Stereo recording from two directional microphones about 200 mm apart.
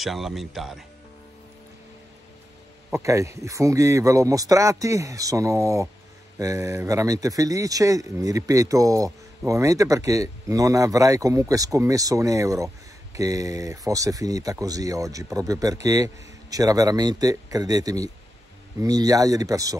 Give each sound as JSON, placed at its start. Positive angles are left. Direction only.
{"t": 0.0, "sound": "speech", "side_deg": 0}
{"t": 2.9, "sound": "speech", "side_deg": -15}